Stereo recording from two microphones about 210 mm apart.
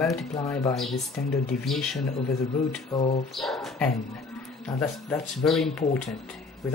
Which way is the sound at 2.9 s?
20° left (ahead or behind).